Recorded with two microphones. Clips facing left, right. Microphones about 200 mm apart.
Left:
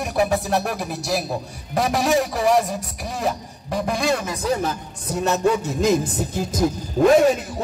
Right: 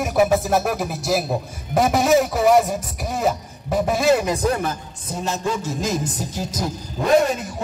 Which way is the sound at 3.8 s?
5° right (ahead or behind).